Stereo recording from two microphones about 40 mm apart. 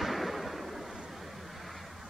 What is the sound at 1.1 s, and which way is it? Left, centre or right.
Vehicle, centre.